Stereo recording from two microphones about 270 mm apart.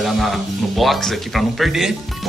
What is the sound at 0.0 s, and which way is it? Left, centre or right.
Speech, centre.